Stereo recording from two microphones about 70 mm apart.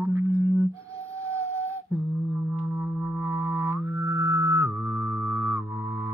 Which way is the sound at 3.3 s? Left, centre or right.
Right.